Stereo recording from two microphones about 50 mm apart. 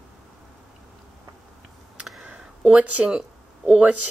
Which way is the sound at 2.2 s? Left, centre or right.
Right.